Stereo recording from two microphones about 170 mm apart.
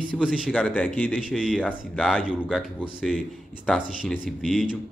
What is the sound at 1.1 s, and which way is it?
Speech, 5° right (ahead or behind).